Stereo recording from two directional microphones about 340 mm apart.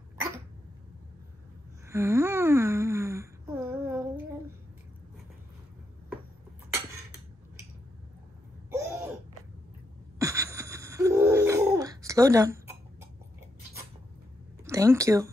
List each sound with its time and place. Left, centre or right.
1.9 s a sound: centre
8.6 s cough: centre
10.1 s gasp: centre
14.6 s speech: centre